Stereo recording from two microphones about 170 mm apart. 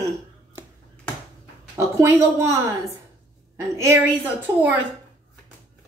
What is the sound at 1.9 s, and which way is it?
Speech, 15° right (ahead or behind).